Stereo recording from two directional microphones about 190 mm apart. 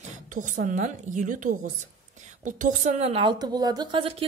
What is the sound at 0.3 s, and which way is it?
A woman's voice, 45° right (ahead or behind).